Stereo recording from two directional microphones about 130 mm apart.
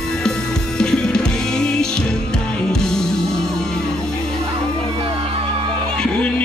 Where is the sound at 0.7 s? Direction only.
5° left (ahead or behind).